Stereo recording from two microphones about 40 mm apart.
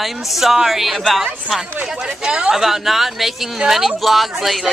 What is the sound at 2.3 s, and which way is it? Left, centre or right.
Speech, right.